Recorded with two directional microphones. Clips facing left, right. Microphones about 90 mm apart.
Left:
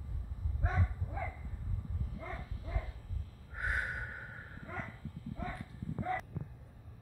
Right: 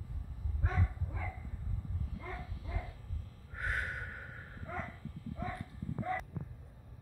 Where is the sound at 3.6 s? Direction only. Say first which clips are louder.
Left 1 dB; 20° left (ahead or behind).